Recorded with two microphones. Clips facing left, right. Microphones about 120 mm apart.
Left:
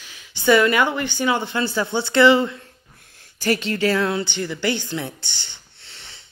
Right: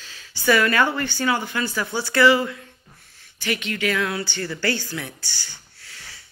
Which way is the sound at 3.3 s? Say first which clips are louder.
Left 5 dB; 40° left (ahead or behind).